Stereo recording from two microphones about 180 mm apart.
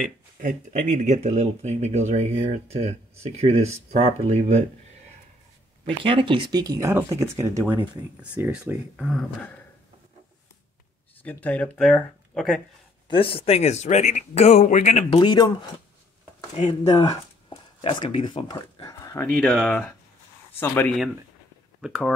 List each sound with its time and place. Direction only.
0.0 s speech: 45° right (ahead or behind)
6.0 s speech: 30° right (ahead or behind); by 9.5 s centre (ahead or behind)
11.2 s speech: 10° left (ahead or behind)
13.1 s speech: 30° left (ahead or behind)
15.0 s speech: 25° left (ahead or behind)
16.5 s speech: 35° left (ahead or behind); by 19.2 s 20° left (ahead or behind)
19.3 s speech: 5° left (ahead or behind)
21.8 s speech: centre (ahead or behind)